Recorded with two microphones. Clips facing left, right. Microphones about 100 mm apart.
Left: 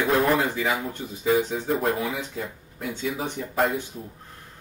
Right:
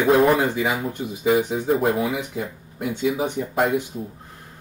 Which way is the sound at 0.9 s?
15° right (ahead or behind).